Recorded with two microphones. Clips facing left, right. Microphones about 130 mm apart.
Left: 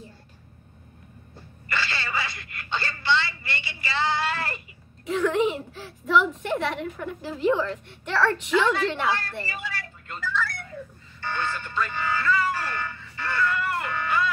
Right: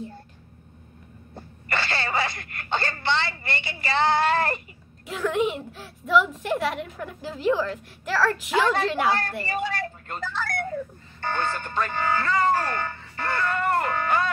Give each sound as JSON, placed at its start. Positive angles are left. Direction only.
{"t": 1.3, "sound": "wail", "side_deg": -50}
{"t": 5.0, "sound": "a woman's voice", "side_deg": 0}
{"t": 8.7, "sound": "speech", "side_deg": -50}